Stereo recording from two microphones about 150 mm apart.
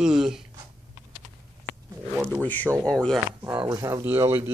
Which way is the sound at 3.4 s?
30° right (ahead or behind).